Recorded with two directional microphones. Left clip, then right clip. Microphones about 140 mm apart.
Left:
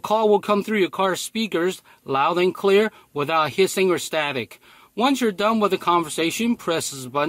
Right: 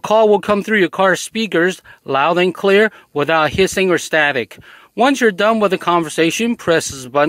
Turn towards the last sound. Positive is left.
turn(degrees=-45)  # may be behind; listen again after turning